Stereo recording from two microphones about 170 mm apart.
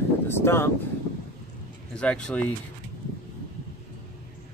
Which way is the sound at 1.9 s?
5° left (ahead or behind).